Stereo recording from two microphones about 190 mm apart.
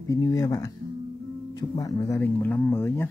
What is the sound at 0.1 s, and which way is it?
Speech, 15° left (ahead or behind).